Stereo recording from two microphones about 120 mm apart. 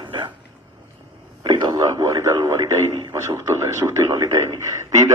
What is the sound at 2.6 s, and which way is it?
A man's voice, 25° right (ahead or behind).